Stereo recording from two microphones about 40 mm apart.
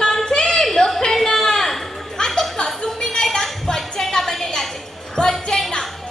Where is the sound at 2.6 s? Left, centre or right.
Centre.